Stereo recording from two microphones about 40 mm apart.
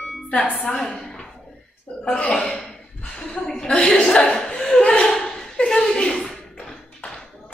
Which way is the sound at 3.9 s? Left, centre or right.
Centre.